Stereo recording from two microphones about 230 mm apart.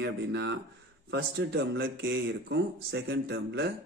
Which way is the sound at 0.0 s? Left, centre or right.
Right.